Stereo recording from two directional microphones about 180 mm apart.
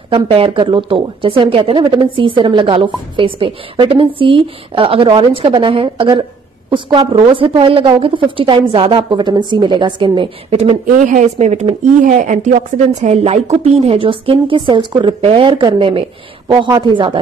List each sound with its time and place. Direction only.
0.1 s a woman's voice: 30° right (ahead or behind)